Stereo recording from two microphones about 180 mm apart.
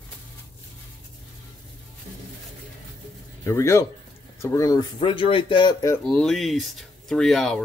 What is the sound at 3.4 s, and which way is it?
Speech, 15° left (ahead or behind).